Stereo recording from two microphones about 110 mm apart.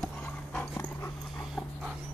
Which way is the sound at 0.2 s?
20° left (ahead or behind).